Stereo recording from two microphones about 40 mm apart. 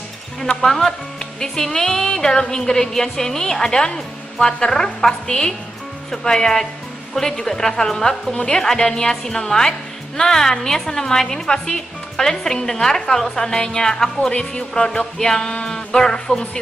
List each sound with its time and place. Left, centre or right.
0.6 s a woman's voice: centre